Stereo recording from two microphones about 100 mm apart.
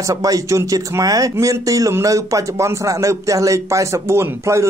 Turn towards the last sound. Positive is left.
turn(degrees=-30)  # may be behind; listen again after turning